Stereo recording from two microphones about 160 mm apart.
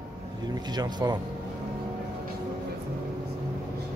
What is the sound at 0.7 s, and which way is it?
Speech, 25° right (ahead or behind).